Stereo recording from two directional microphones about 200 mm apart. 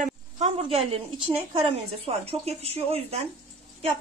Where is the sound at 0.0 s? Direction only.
30° right (ahead or behind).